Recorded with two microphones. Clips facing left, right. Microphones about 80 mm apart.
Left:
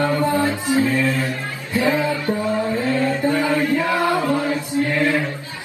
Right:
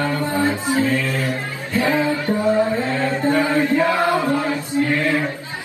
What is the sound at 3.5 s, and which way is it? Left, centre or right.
Chant, right.